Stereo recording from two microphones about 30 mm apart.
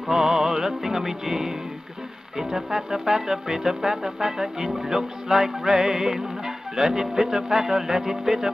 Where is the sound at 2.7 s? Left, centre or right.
Centre.